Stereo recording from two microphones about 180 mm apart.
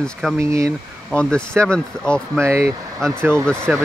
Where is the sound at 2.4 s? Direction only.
15° right (ahead or behind).